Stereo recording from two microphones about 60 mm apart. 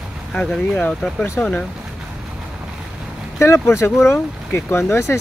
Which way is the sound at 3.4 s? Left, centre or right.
Left.